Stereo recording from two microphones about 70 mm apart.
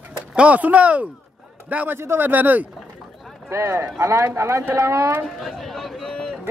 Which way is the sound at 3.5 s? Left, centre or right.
Right.